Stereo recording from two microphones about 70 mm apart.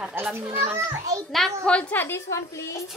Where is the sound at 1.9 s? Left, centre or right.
Left.